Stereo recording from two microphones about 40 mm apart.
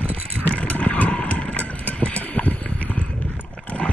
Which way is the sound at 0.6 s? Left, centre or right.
Left.